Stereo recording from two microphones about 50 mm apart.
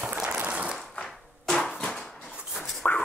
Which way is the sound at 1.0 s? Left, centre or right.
Centre.